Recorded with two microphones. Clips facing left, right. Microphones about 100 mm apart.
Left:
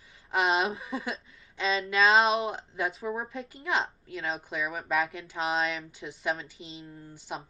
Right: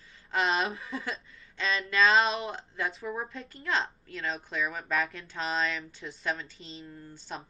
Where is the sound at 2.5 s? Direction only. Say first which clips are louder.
Left 2 dB; 15° left (ahead or behind).